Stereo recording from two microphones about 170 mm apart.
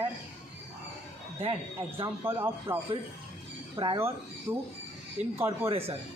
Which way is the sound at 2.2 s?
15° right (ahead or behind).